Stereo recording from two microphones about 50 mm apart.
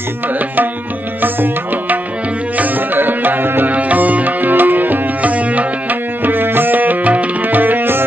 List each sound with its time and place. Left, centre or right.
1.2 s music: right
3.7 s music: right